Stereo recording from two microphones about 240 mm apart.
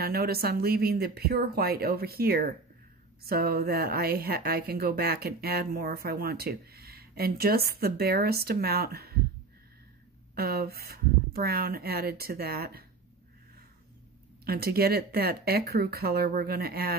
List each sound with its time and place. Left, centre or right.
0.0 s speech: right
10.3 s speech: right
14.4 s speech: right